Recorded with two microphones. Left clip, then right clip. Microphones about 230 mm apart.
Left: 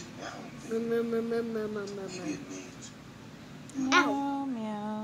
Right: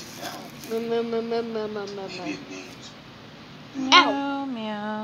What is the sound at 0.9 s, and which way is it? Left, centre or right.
Speech, left.